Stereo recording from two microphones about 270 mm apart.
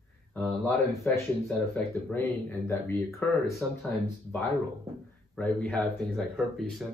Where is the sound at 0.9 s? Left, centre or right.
Centre.